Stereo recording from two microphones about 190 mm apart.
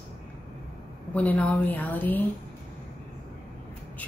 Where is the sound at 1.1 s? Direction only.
10° left (ahead or behind).